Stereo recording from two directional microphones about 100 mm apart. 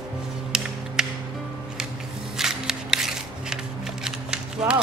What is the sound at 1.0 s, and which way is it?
Music, 5° right (ahead or behind).